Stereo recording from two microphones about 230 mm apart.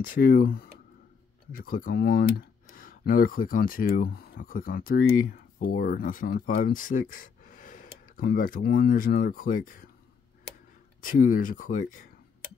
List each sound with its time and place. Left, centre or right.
0.0 s speech: left
11.0 s speech: left